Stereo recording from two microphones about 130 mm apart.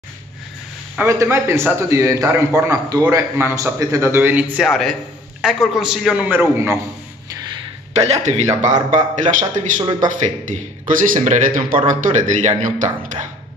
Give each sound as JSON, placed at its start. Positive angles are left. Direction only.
{"t": 0.9, "sound": "a man's voice", "side_deg": -20}
{"t": 4.6, "sound": "a man's voice", "side_deg": 0}
{"t": 6.2, "sound": "a man's voice", "side_deg": -15}
{"t": 7.9, "sound": "speech", "side_deg": -55}
{"t": 8.9, "sound": "speech", "side_deg": -75}
{"t": 9.8, "sound": "speech", "side_deg": -35}
{"t": 10.0, "sound": "speech", "side_deg": -70}